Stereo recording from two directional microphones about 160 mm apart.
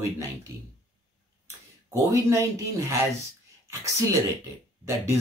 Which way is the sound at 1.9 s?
20° right (ahead or behind).